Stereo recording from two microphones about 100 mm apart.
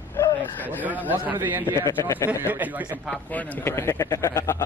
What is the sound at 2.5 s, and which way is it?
Speech, 15° right (ahead or behind).